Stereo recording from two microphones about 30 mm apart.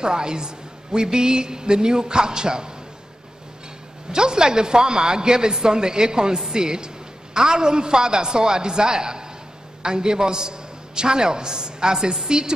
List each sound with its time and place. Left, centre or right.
0.0 s a man's voice: right
4.1 s a man's voice: right